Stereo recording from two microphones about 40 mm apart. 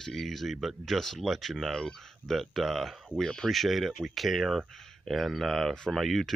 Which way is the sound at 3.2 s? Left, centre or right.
Centre.